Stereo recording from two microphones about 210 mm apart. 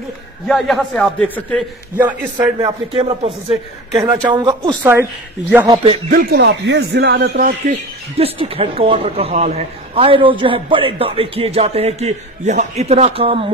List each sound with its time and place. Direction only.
0.5 s a man's voice: centre (ahead or behind)
2.4 s speech: 20° right (ahead or behind)
4.0 s speech: 15° right (ahead or behind)
5.9 s speech: 40° right (ahead or behind)
7.6 s speech: 30° right (ahead or behind)